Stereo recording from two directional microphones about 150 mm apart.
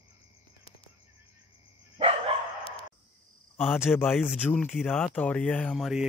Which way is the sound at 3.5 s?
15° left (ahead or behind).